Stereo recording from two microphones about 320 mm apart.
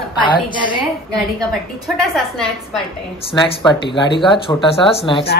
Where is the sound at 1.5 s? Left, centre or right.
Centre.